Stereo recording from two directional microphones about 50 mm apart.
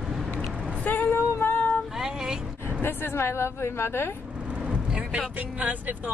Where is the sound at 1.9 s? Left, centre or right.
Centre.